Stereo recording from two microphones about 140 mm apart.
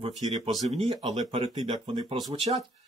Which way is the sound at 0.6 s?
50° right (ahead or behind).